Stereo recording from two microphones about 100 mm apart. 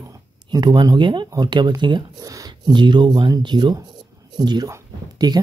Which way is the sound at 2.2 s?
35° right (ahead or behind).